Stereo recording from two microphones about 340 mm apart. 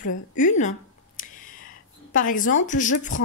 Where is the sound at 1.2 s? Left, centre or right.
Left.